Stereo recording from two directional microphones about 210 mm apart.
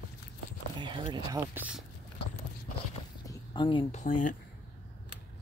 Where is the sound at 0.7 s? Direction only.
20° right (ahead or behind).